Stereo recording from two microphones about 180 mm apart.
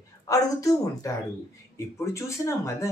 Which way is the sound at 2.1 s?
15° left (ahead or behind).